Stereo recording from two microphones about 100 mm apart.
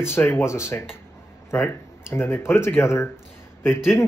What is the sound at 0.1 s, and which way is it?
Speech, 25° left (ahead or behind).